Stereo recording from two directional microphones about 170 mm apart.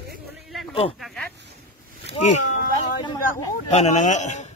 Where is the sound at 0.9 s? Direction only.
Centre (ahead or behind).